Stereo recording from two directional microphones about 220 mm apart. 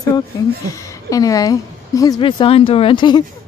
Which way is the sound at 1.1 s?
15° left (ahead or behind).